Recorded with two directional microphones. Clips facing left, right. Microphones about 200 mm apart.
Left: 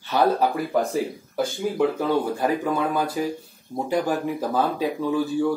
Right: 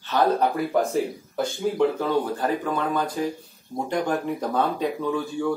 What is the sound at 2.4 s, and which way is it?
Speech, 10° left (ahead or behind).